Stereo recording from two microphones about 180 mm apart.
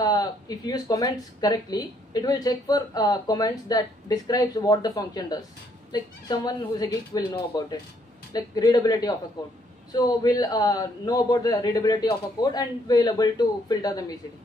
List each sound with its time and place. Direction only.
0.0 s speech: 20° left (ahead or behind)